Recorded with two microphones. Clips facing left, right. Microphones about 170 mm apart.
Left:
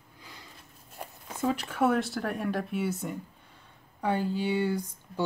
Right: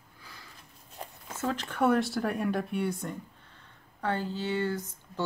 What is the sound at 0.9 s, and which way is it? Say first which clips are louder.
Speech: left 1 dB; 10° left (ahead or behind).